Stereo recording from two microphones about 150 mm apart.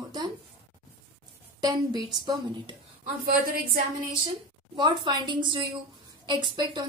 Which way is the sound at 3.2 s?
80° right.